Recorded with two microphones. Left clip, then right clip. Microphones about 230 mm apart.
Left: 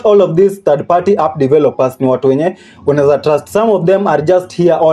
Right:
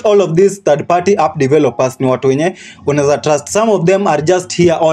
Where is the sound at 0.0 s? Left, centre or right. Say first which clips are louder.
Left 1 dB; right.